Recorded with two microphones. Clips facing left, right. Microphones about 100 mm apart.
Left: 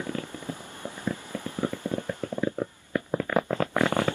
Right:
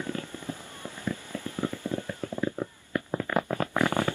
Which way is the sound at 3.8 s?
20° left (ahead or behind).